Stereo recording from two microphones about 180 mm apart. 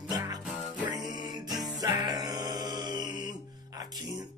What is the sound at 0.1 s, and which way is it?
Music, 20° right (ahead or behind).